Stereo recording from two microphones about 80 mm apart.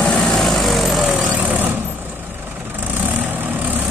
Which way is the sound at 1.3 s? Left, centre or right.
Right.